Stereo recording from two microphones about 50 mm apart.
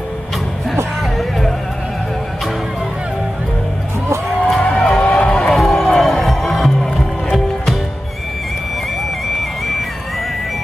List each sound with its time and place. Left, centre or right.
4.6 s music: left
5.5 s run: centre
6.1 s music: centre